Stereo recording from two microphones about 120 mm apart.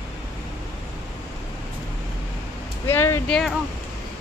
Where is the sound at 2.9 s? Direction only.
20° left (ahead or behind).